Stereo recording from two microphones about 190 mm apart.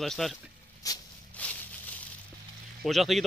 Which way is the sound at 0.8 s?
20° left (ahead or behind).